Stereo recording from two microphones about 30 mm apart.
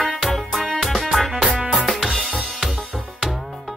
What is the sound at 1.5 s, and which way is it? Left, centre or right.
Music, right.